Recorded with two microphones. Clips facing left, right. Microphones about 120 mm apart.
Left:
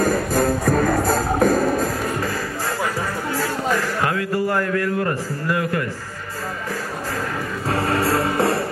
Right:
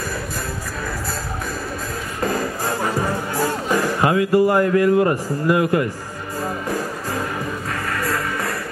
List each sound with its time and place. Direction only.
0.0 s music: 50° left (ahead or behind)
3.0 s music: 15° right (ahead or behind)
7.7 s music: 30° left (ahead or behind)